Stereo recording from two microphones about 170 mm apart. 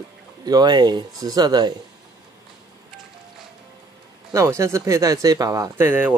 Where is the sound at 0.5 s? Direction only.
25° right (ahead or behind).